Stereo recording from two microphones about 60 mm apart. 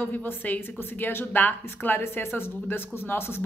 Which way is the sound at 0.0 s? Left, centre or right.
Left.